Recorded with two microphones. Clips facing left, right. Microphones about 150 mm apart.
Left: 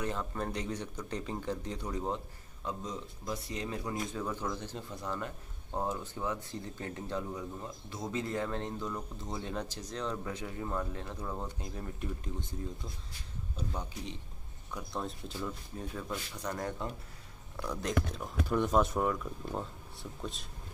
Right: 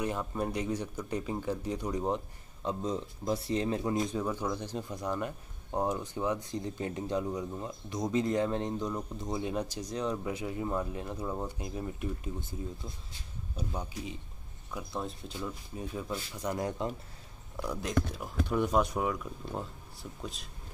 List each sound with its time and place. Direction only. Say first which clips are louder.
0.0 s speech: right 3 dB; 15° right (ahead or behind)
2.8 s speech: right 7 dB; 30° right (ahead or behind); by 12.5 s 10° right (ahead or behind)
13.6 s speech: right 2 dB; 10° right (ahead or behind)
14.9 s speech: even; centre (ahead or behind)
15.3 s speech: right 1 dB; 10° right (ahead or behind)